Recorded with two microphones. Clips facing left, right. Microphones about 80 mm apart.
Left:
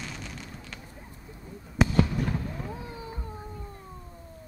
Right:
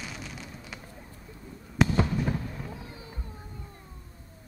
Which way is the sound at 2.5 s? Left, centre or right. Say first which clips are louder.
Left 3 dB; left.